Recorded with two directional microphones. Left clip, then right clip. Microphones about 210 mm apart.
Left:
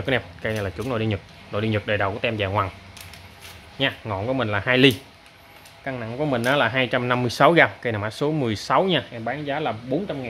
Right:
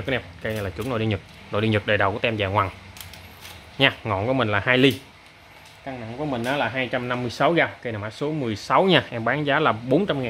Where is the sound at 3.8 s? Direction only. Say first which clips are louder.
Right 4 dB; 10° right (ahead or behind).